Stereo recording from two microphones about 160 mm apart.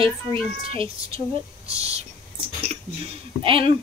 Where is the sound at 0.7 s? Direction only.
35° right (ahead or behind).